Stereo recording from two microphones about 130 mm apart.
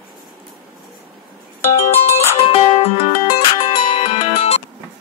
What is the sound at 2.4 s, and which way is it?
Music, 50° left (ahead or behind).